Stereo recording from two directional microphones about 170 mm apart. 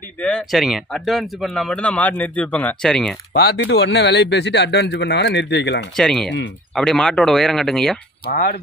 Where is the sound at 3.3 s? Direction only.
80° left.